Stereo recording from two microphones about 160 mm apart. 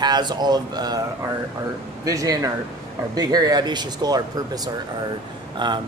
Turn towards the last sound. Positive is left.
turn(degrees=-30)  # may be behind; listen again after turning